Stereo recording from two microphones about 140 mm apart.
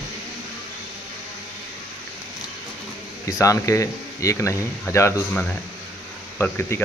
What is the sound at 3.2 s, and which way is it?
Speech, 25° left (ahead or behind).